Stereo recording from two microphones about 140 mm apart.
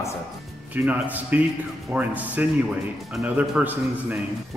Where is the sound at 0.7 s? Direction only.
10° right (ahead or behind).